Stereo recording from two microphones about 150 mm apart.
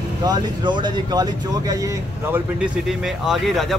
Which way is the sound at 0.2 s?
30° right (ahead or behind).